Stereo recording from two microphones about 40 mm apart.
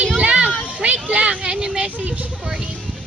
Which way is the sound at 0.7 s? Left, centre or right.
Right.